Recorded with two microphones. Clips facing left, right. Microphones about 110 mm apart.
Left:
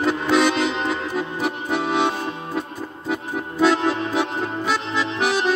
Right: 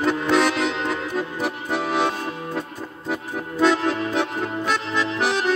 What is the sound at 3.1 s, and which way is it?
Music, 5° left (ahead or behind).